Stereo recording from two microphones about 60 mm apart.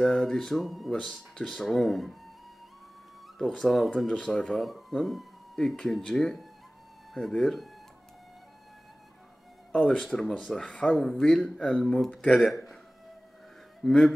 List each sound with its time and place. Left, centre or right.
0.0 s speech: centre
3.3 s speech: centre
9.7 s speech: centre
12.4 s speech: centre
13.8 s speech: centre